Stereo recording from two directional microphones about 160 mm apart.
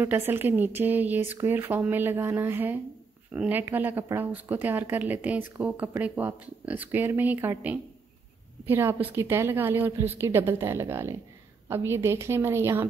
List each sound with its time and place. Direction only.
0.0 s a woman's voice: 15° right (ahead or behind)